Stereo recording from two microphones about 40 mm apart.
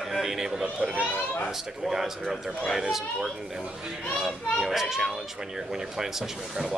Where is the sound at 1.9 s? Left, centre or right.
Centre.